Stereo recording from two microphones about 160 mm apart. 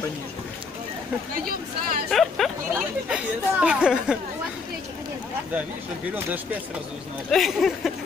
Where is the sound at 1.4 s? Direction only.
65° right (ahead or behind).